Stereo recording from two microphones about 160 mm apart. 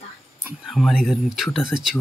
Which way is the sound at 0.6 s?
Centre (ahead or behind).